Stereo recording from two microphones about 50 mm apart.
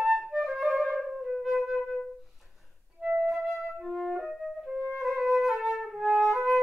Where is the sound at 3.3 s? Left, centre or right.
Centre.